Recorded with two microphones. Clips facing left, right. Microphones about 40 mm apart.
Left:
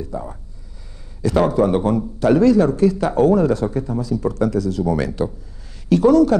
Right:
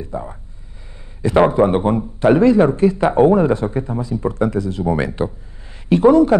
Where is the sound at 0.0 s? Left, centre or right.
Right.